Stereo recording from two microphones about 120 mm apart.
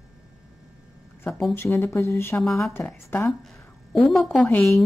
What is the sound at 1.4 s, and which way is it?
A woman's voice, 20° left (ahead or behind).